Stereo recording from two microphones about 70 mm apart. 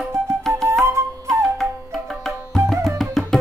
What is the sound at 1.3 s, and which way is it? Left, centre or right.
Flute, centre.